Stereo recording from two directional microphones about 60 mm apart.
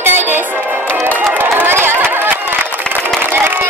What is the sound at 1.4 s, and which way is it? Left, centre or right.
Run, right.